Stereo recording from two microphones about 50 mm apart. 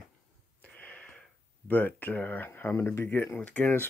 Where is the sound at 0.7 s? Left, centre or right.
Left.